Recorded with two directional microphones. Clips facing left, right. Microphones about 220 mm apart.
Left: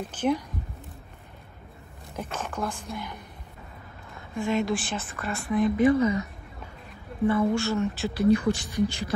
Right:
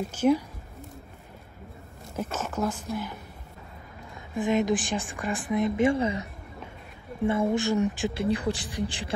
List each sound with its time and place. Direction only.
0.1 s speech: 10° right (ahead or behind)
2.1 s speech: 5° right (ahead or behind)
4.4 s speech: 20° right (ahead or behind)
7.2 s speech: 25° right (ahead or behind)
8.2 s speech: 30° right (ahead or behind)